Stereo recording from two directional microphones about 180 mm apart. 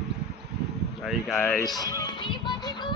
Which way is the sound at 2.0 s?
25° left (ahead or behind).